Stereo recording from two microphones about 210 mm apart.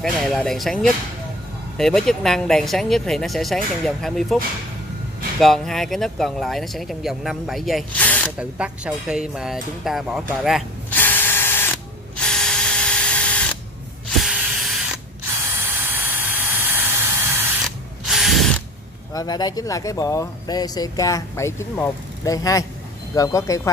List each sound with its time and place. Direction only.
0.0 s speech: centre (ahead or behind)
1.8 s speech: centre (ahead or behind)
5.4 s speech: centre (ahead or behind)
8.4 s speech: 5° right (ahead or behind); by 11.7 s 10° left (ahead or behind)
12.2 s drill: centre (ahead or behind)
15.3 s a sound: 10° right (ahead or behind)
18.0 s ratchet: centre (ahead or behind)
19.1 s speech: 20° left (ahead or behind)